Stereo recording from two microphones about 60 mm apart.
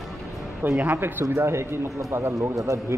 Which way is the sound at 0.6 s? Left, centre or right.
Right.